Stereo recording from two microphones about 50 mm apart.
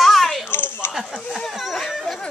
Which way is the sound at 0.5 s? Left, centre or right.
Left.